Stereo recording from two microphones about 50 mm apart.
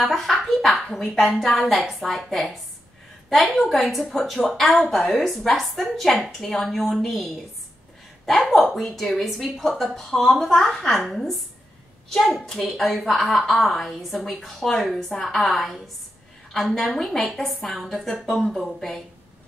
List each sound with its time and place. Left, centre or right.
0.0 s a sound: centre
0.8 s a child's voice: centre
4.9 s a woman's voice: left
5.2 s a woman's voice: centre
8.5 s a woman's voice: centre